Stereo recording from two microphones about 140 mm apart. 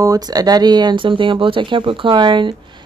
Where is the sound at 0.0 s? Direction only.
25° right (ahead or behind).